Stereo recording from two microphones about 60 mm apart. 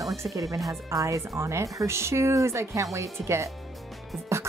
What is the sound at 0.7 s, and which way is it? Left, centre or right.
A woman's voice, right.